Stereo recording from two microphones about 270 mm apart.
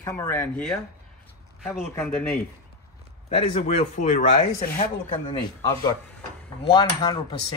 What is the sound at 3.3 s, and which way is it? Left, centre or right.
Speech, left.